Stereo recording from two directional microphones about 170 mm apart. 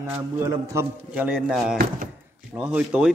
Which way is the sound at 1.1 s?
5° right (ahead or behind).